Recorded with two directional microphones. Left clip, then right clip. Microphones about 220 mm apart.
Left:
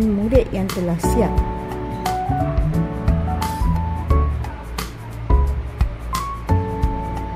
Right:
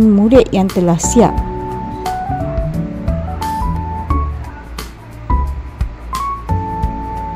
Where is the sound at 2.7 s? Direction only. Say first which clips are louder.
Right 2 dB; centre (ahead or behind).